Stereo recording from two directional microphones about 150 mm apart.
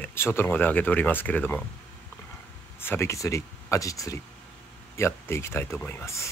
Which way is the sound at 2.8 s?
15° left (ahead or behind).